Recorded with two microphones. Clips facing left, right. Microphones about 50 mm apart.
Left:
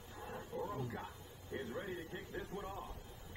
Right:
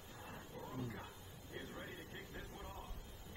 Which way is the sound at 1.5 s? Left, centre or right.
Left.